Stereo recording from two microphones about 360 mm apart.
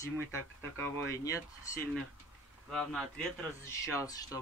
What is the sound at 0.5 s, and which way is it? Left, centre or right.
Speech, centre.